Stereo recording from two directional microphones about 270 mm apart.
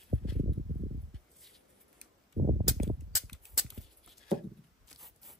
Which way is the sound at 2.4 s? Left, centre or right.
Right.